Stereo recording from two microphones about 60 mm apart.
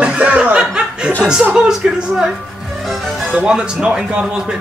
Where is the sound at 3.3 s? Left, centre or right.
Centre.